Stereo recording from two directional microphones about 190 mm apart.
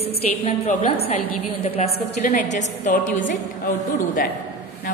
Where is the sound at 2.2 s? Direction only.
45° left (ahead or behind).